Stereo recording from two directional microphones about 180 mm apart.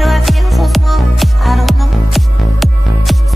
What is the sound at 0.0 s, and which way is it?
Music, centre (ahead or behind).